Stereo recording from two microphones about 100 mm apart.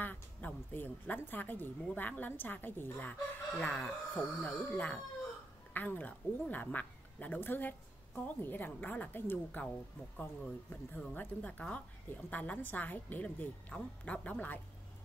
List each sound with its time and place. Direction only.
0.0 s speech: 15° left (ahead or behind)